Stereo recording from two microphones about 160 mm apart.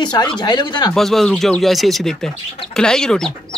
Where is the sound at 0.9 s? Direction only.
Centre (ahead or behind).